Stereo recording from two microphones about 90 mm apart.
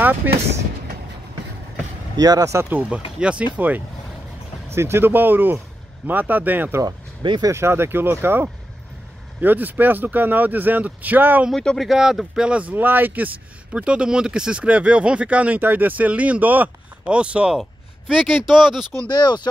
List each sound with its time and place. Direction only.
0.2 s speech: 20° right (ahead or behind)
2.1 s speech: 45° right (ahead or behind)
2.7 s speech: 15° right (ahead or behind)
11.5 s speech: 5° left (ahead or behind); by 17.6 s 10° right (ahead or behind)
17.6 s a sound: 5° right (ahead or behind)
18.5 s speech: 5° right (ahead or behind)
19.0 s speech: 55° left (ahead or behind)